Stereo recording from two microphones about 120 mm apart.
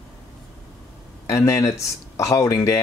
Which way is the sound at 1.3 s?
25° left (ahead or behind).